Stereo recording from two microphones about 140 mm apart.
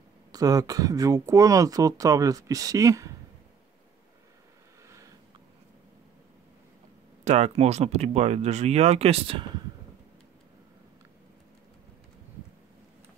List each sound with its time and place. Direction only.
0.3 s speech: 25° right (ahead or behind)
7.2 s speech: 50° right (ahead or behind)